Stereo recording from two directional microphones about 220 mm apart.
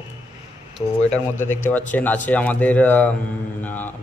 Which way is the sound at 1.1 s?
10° left (ahead or behind).